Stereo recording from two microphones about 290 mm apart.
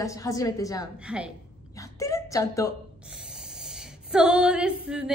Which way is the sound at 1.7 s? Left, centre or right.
Centre.